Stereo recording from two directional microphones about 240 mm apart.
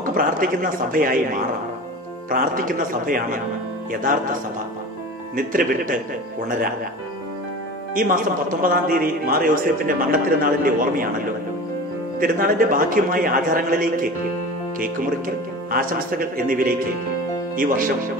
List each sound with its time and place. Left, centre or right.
0.0 s speech: right
5.3 s speech: right
7.9 s speech: right
12.2 s speech: right